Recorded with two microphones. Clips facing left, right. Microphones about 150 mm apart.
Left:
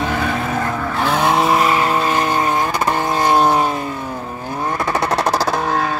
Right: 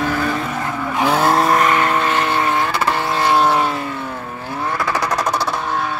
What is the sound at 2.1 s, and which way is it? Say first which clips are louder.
Vehicle: left 1 dB; 40° left (ahead or behind).